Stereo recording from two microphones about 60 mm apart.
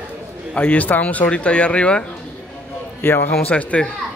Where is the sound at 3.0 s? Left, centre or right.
Left.